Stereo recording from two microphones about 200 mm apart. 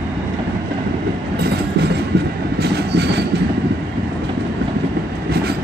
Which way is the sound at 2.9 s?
55° right (ahead or behind).